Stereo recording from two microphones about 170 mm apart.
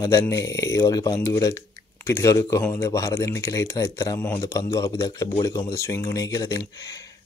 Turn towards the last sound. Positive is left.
turn(degrees=20)  # may be behind; listen again after turning